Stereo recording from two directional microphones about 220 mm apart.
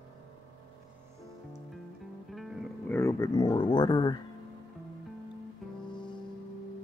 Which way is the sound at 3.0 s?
15° left (ahead or behind).